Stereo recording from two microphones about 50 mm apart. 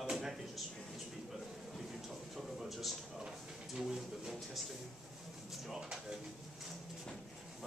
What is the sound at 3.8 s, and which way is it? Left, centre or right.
Speech, centre.